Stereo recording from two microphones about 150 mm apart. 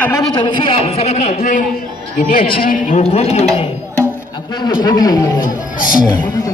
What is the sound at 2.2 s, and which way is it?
A man's voice, 75° left (ahead or behind).